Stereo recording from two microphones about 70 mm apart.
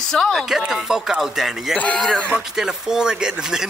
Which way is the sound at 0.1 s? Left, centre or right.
Centre.